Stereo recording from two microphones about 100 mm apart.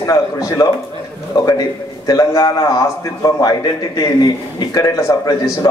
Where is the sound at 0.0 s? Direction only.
35° left (ahead or behind).